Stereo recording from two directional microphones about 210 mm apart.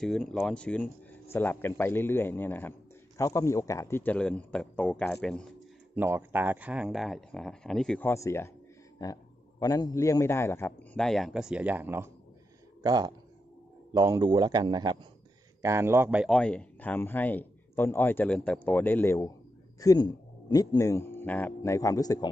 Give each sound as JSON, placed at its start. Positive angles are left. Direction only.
{"t": 0.0, "sound": "a man's voice", "side_deg": 0}
{"t": 5.9, "sound": "a man's voice", "side_deg": -10}